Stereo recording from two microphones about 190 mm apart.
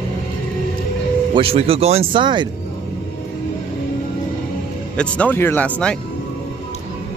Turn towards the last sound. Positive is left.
turn(degrees=5)  # may be behind; listen again after turning